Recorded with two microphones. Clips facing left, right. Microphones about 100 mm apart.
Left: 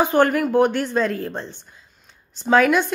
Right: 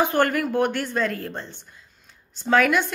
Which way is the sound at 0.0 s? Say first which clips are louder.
Left 4 dB; 15° left (ahead or behind).